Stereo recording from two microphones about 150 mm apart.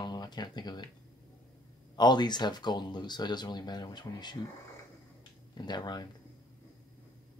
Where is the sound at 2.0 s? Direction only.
30° left (ahead or behind).